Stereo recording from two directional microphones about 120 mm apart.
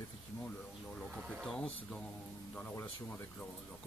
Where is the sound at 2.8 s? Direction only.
20° left (ahead or behind).